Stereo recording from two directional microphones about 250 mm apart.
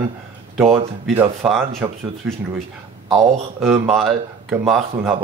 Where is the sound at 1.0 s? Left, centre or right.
Centre.